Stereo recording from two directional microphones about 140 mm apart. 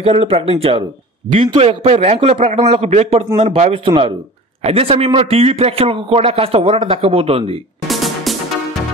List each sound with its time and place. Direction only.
0.0 s a man's voice: 45° right (ahead or behind)
3.8 s a man's voice: 40° right (ahead or behind)
7.9 s music: centre (ahead or behind)